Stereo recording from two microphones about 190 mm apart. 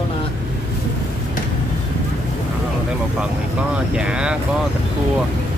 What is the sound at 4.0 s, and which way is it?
Speech, 5° right (ahead or behind).